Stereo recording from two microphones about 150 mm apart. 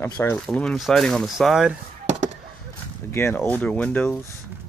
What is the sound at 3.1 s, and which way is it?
Speech, 15° left (ahead or behind).